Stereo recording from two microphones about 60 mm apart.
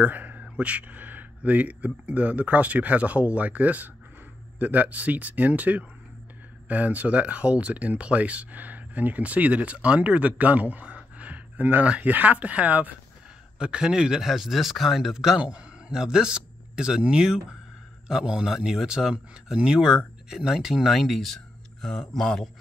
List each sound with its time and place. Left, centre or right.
0.0 s speech: right
13.6 s speech: centre